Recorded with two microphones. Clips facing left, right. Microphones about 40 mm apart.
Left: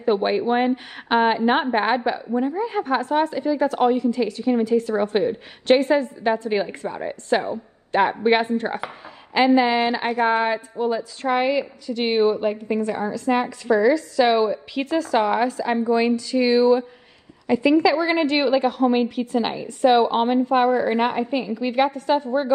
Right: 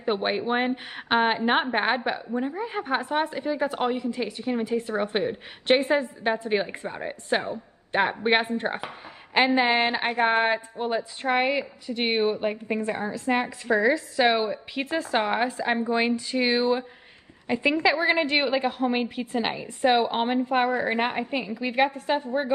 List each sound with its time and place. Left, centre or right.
0.0 s a woman's voice: centre
2.6 s a woman's voice: centre
7.3 s a woman's voice: centre
8.4 s a woman's voice: right
12.6 s a woman's voice: right
14.5 s a woman's voice: right